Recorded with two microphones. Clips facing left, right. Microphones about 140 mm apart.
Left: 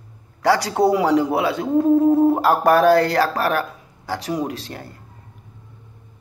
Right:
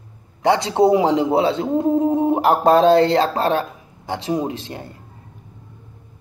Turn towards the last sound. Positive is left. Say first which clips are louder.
# right 1 dB
turn(degrees=-20)  # may be behind; listen again after turning